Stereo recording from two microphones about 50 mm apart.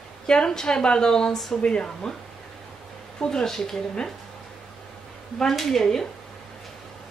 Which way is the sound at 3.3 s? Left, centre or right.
Centre.